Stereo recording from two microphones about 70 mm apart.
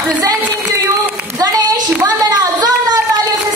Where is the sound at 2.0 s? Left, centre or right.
Right.